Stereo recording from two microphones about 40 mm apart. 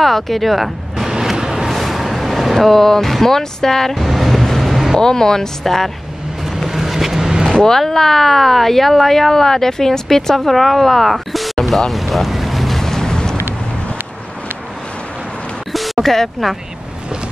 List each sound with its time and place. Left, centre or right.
0.0 s speech: centre
1.3 s a sound: centre
1.7 s speech: centre
4.0 s vehicle: centre
5.0 s speech: centre
6.4 s vehicle: centre
7.5 s speech: centre
11.6 s boat: centre
15.7 s a sound: centre